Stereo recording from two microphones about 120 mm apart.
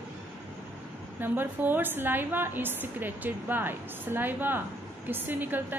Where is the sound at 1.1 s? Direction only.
15° right (ahead or behind).